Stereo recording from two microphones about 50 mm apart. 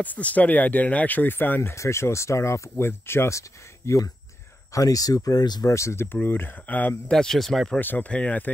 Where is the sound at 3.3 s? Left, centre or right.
Left.